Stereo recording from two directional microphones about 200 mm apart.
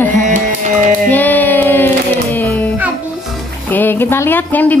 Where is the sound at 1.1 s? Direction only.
10° left (ahead or behind).